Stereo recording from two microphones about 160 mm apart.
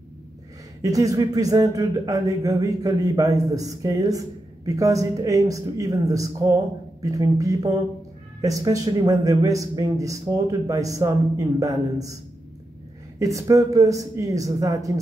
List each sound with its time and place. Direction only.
0.8 s a man's voice: 20° right (ahead or behind)
13.2 s a man's voice: 20° right (ahead or behind)